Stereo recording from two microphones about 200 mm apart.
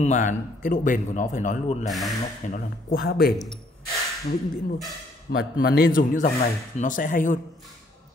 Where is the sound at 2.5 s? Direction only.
50° left (ahead or behind).